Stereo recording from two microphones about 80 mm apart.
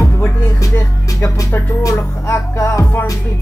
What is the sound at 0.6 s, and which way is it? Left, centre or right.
Music, left.